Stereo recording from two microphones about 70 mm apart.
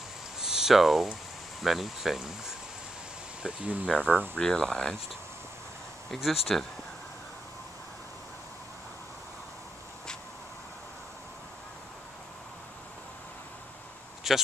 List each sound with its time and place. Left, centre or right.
0.4 s a sound: centre
1.6 s speech: centre
3.4 s speech: centre
3.8 s speech: centre
4.1 s speech: right
4.4 s speech: centre
6.1 s speech: centre
14.2 s speech: centre